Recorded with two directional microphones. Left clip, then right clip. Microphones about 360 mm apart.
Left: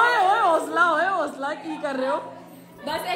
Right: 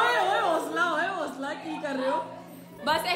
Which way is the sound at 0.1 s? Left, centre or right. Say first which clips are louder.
Left 5 dB; left.